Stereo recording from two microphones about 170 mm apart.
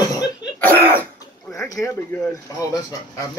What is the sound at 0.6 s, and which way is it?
Cough, 10° left (ahead or behind).